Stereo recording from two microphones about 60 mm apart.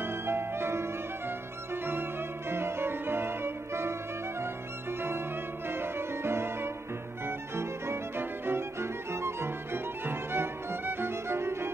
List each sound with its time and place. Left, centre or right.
0.0 s music: right
2.5 s music: right
5.7 s music: right
7.2 s violin: right